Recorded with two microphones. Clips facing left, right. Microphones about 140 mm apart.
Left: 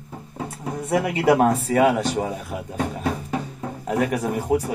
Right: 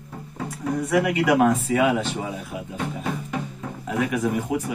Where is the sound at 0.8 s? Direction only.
25° left (ahead or behind).